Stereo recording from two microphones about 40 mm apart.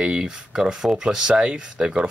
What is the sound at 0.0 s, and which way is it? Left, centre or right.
Speech, centre.